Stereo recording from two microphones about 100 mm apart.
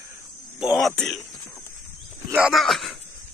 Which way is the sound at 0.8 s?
5° left (ahead or behind).